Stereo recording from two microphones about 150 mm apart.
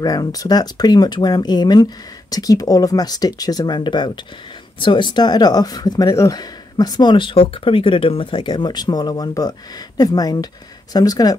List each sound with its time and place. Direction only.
0.0 s speech: 25° left (ahead or behind)